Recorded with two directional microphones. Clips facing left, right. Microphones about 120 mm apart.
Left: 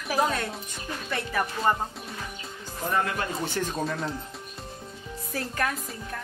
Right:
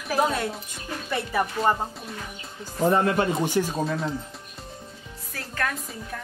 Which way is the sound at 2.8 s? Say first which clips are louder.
Right 7 dB; 30° right (ahead or behind).